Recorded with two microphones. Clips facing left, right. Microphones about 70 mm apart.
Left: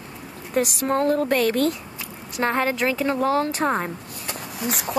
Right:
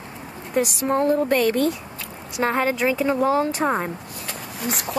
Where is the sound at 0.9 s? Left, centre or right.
Centre.